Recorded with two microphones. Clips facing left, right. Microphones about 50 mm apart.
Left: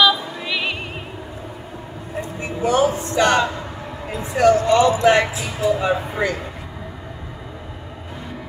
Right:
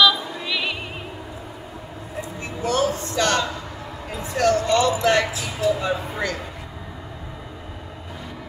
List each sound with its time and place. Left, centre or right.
0.0 s singing: centre
2.4 s a sound: centre
4.3 s speech: centre